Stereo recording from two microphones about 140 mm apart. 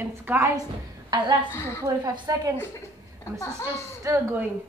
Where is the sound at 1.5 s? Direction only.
20° left (ahead or behind).